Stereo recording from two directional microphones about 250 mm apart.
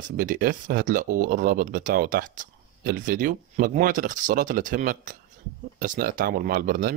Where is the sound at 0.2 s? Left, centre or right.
Right.